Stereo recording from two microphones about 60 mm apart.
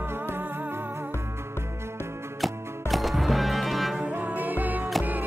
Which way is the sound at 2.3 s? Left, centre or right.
Centre.